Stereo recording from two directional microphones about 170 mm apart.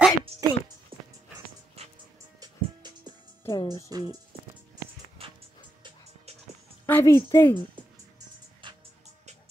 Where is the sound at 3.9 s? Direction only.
20° right (ahead or behind).